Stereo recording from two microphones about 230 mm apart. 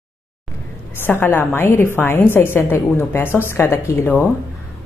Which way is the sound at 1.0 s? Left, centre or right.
Centre.